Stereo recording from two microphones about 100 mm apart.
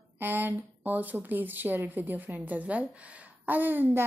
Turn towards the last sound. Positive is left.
turn(degrees=-20)  # may be behind; listen again after turning